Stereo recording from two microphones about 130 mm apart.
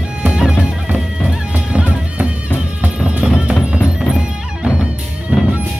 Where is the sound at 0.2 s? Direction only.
10° right (ahead or behind).